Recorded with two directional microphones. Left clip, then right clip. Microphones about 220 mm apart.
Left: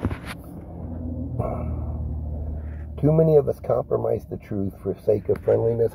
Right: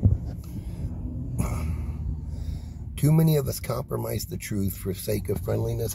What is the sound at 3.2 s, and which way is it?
Speech, 20° right (ahead or behind).